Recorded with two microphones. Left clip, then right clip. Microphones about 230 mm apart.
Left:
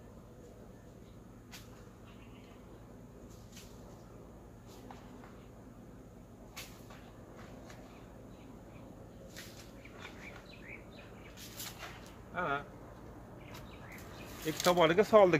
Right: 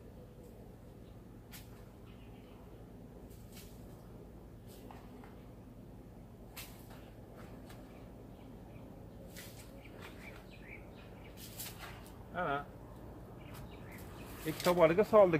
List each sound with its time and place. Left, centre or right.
12.4 s speech: centre
14.4 s speech: left